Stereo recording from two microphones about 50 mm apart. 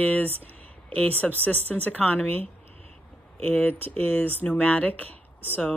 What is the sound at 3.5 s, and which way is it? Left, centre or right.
Speech, left.